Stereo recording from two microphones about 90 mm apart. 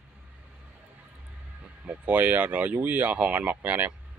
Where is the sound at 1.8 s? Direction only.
15° right (ahead or behind).